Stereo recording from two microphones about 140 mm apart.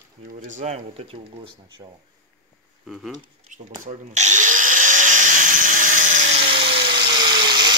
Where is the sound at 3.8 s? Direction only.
55° right (ahead or behind).